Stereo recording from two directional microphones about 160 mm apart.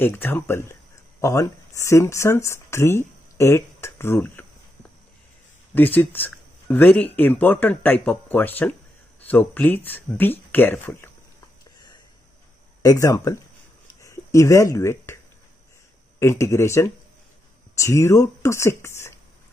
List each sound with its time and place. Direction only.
0.0 s speech: 15° left (ahead or behind)
5.8 s speech: 10° left (ahead or behind)
12.8 s speech: 20° left (ahead or behind)
16.2 s speech: 15° left (ahead or behind)